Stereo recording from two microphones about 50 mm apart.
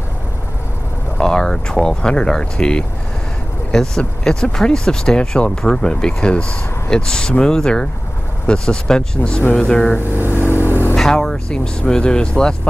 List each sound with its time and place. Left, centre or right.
1.1 s speech: centre
10.0 s vehicle: right
10.3 s vehicle: left
11.0 s speech: centre